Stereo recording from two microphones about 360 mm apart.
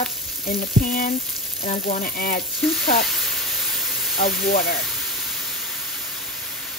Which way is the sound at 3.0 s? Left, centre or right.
Centre.